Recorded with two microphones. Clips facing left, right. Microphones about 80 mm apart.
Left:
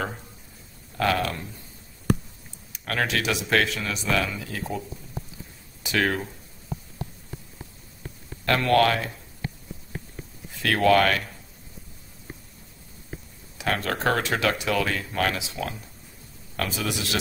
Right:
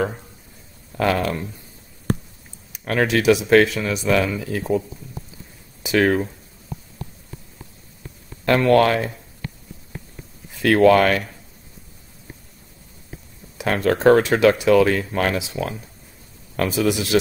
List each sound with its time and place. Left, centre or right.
0.9 s speech: right
2.8 s speech: centre
8.6 s speech: centre
10.6 s speech: centre
13.6 s speech: centre
16.5 s speech: centre